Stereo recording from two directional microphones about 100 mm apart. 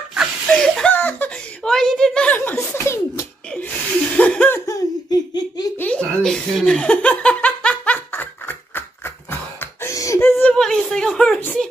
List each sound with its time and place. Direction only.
0.5 s laughter: 5° left (ahead or behind)
0.9 s a sound: 15° left (ahead or behind)
2.3 s chuckle: 20° left (ahead or behind)
2.7 s laughter: 25° left (ahead or behind)
3.5 s laughter: 15° left (ahead or behind)
4.6 s laughter: 30° left (ahead or behind)
5.8 s chuckle: 10° left (ahead or behind); by 10.2 s 30° left (ahead or behind)
10.2 s a sound: 20° left (ahead or behind)
10.5 s a sound: 5° left (ahead or behind)